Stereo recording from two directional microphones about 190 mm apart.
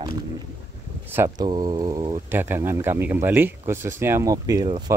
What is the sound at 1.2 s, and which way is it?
Speech, 20° right (ahead or behind).